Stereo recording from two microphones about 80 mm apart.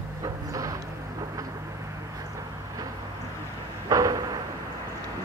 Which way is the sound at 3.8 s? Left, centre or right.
Right.